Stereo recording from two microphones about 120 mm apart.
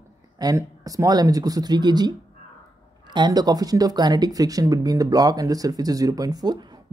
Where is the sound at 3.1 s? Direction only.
35° right (ahead or behind).